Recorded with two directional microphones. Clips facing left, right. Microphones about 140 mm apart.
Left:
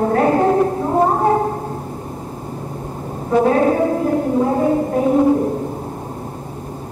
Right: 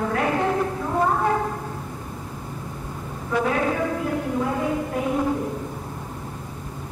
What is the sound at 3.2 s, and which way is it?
Speech, 35° left (ahead or behind).